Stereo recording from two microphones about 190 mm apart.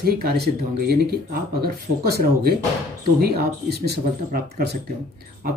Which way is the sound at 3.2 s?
55° right (ahead or behind).